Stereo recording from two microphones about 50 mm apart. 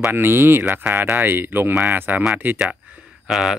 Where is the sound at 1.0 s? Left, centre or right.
Right.